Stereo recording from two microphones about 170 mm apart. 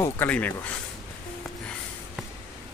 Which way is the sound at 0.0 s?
10° left (ahead or behind).